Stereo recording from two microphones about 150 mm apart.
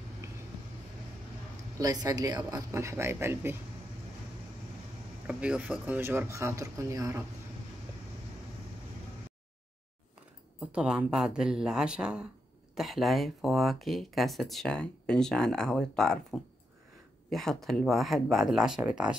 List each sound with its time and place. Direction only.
1.8 s speech: 25° right (ahead or behind)
5.2 s speech: 5° right (ahead or behind)
10.6 s speech: 5° right (ahead or behind)